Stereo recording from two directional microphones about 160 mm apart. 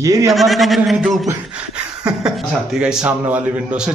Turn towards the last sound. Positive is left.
turn(degrees=-5)  # may be behind; listen again after turning